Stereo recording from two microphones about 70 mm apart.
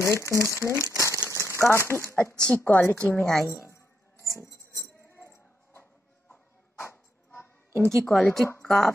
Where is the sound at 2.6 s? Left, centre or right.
Left.